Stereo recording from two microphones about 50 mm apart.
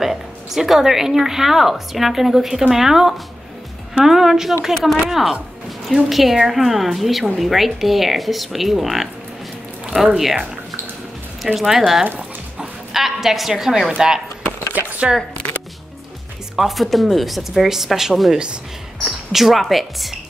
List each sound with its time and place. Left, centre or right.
0.0 s a woman's voice: centre
11.4 s speech: centre
14.7 s a sound: right
16.5 s speech: centre